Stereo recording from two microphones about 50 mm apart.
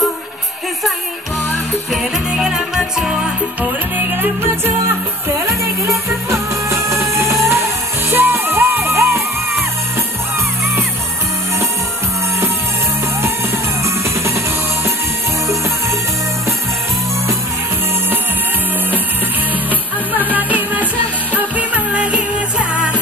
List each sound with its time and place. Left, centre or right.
1.9 s music: centre
4.0 s music: right
5.5 s music: right
20.3 s music: right